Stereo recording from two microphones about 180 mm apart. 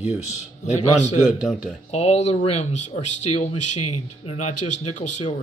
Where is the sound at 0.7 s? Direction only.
40° left (ahead or behind).